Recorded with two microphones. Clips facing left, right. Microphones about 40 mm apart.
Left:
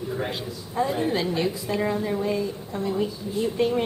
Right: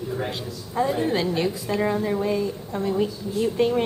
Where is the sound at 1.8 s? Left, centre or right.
Centre.